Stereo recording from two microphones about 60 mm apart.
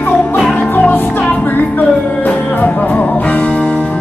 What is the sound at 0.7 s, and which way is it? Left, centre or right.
Music, left.